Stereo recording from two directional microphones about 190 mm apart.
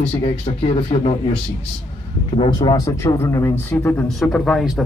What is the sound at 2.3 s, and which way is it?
Speech, 25° left (ahead or behind).